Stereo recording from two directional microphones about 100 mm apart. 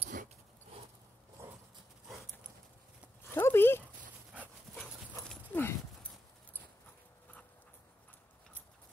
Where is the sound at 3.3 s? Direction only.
25° left (ahead or behind).